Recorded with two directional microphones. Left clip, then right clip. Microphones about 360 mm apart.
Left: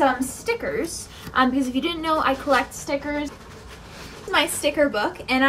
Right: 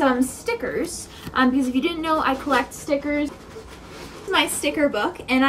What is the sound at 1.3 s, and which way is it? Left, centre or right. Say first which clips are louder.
A woman's voice: even; centre.